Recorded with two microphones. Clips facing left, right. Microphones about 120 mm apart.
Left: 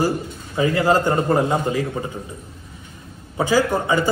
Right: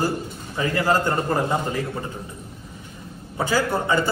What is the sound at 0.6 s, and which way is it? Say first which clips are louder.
Speech: left 4 dB; 20° left (ahead or behind).